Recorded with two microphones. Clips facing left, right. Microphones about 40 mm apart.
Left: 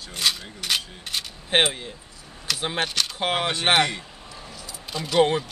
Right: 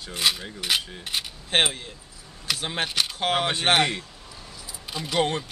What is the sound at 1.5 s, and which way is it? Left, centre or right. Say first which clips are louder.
Speech: left 2 dB; centre.